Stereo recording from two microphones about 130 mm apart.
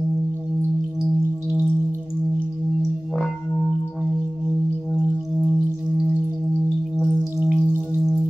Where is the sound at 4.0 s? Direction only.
10° right (ahead or behind).